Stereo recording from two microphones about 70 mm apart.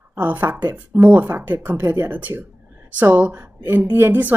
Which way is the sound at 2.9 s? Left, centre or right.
Right.